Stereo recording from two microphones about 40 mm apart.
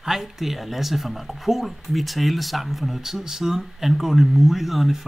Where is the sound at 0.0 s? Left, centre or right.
Centre.